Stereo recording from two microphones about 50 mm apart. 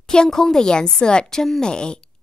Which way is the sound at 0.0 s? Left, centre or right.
Centre.